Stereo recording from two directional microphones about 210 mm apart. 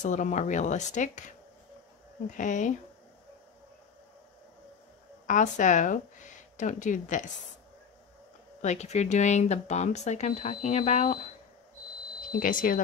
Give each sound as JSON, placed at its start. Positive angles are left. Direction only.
{"t": 0.0, "sound": "speech", "side_deg": 35}
{"t": 5.2, "sound": "speech", "side_deg": 35}
{"t": 8.5, "sound": "speech", "side_deg": 35}
{"t": 12.3, "sound": "speech", "side_deg": 40}